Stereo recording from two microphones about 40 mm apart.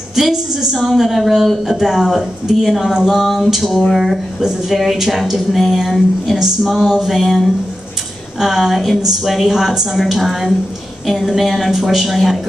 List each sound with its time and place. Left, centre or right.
0.1 s a woman's voice: centre